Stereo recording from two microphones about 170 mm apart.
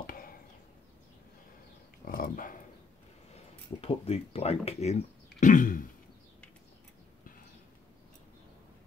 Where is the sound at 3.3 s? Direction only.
35° left (ahead or behind); by 5.8 s 50° left (ahead or behind).